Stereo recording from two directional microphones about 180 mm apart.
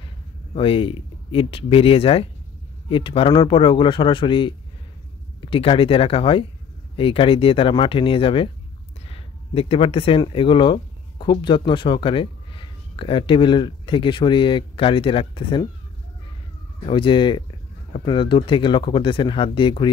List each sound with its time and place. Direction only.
0.6 s speech: 30° left (ahead or behind)
16.8 s speech: 25° left (ahead or behind)